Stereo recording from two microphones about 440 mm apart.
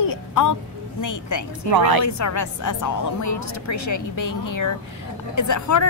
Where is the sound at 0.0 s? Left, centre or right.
Left.